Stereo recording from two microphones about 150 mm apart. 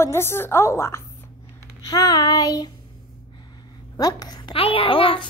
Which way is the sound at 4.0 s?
25° left (ahead or behind).